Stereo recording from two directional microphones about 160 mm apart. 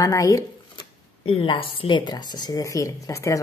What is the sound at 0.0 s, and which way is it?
Speech, 20° left (ahead or behind).